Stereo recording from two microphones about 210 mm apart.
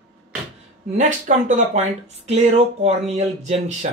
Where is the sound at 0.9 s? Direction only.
35° right (ahead or behind).